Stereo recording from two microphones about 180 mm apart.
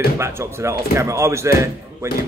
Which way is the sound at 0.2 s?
15° right (ahead or behind).